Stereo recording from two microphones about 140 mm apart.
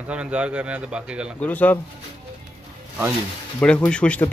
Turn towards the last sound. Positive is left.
turn(degrees=10)  # may be behind; listen again after turning